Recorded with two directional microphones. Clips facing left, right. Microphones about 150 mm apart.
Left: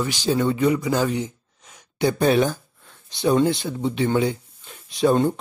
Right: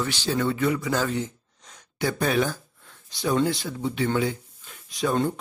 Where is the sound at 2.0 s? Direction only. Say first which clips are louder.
Left 5 dB; 20° left (ahead or behind).